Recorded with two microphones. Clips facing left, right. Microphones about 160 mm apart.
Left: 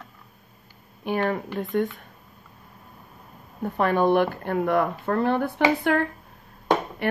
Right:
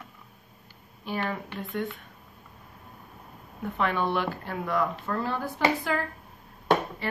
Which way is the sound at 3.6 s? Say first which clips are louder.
Left 6 dB; 45° left (ahead or behind).